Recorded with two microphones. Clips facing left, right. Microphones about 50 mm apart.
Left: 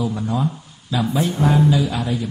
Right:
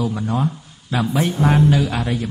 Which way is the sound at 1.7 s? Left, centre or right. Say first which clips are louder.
Right 1 dB; right.